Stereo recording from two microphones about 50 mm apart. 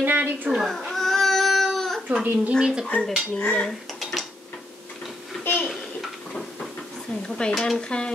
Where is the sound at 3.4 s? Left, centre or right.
Left.